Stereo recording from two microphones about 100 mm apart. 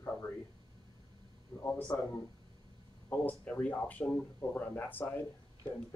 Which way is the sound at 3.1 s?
15° left (ahead or behind).